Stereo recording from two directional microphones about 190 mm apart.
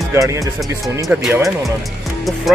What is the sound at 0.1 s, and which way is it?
Speech, 15° right (ahead or behind).